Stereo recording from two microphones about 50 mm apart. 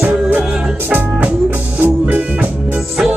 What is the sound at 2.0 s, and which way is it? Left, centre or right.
Music, right.